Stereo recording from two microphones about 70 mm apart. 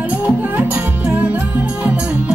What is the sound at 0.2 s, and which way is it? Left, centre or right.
Music, centre.